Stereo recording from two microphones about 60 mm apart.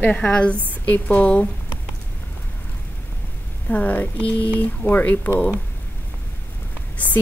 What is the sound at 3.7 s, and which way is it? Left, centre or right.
A woman's voice, left.